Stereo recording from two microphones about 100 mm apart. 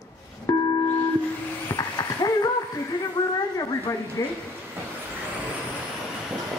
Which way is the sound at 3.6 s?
35° left (ahead or behind).